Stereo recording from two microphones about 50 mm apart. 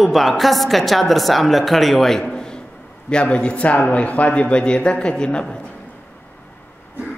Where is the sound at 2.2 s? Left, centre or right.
Centre.